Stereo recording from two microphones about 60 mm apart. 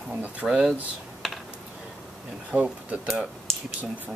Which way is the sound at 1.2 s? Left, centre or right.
Centre.